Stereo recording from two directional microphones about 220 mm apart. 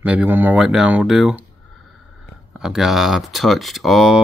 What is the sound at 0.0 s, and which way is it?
Speech, 5° right (ahead or behind).